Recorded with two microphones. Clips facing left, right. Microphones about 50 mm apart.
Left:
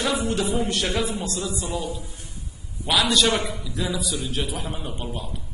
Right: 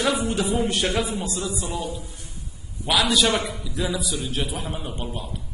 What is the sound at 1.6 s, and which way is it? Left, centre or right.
Speech, right.